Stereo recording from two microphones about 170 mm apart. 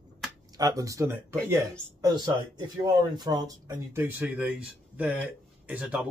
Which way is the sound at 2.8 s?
25° right (ahead or behind).